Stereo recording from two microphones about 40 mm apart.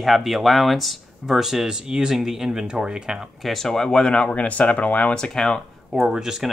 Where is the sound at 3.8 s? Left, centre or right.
Left.